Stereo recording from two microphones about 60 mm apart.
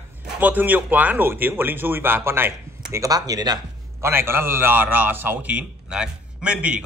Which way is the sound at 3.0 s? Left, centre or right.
Right.